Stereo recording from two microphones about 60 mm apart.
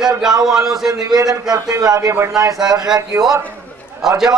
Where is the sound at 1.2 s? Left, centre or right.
Right.